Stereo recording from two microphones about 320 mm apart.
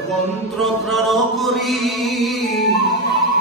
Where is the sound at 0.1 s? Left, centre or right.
Centre.